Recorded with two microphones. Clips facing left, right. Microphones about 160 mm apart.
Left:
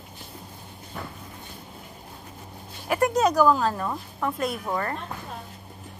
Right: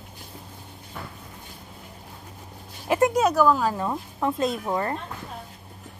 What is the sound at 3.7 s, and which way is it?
Speech, 20° right (ahead or behind).